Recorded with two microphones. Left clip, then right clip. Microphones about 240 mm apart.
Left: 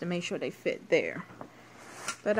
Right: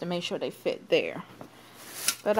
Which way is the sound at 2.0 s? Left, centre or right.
Right.